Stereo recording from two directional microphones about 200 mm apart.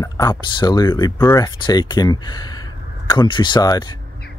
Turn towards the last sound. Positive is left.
turn(degrees=20)  # may be behind; listen again after turning